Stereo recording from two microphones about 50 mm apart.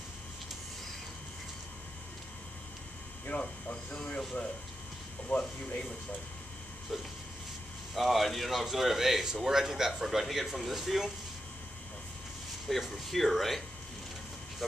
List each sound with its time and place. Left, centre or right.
3.3 s speech: left
3.7 s speech: centre
5.3 s speech: left
6.9 s a sound: centre
7.9 s speech: centre
12.6 s speech: centre
14.6 s speech: centre